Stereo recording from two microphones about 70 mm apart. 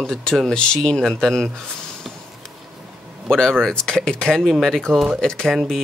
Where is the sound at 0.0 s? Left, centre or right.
Centre.